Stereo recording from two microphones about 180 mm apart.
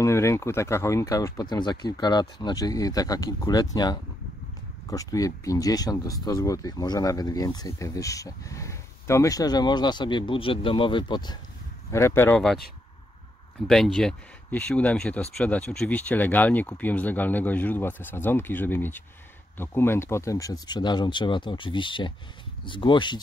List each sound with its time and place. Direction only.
0.0 s speech: 15° left (ahead or behind)
11.9 s speech: 15° left (ahead or behind)
13.7 s speech: centre (ahead or behind); by 23.2 s 25° left (ahead or behind)